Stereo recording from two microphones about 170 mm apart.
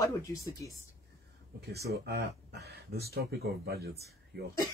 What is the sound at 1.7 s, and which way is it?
Speech, 70° right (ahead or behind).